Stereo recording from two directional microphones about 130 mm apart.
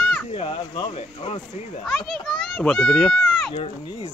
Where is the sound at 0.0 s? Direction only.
5° left (ahead or behind).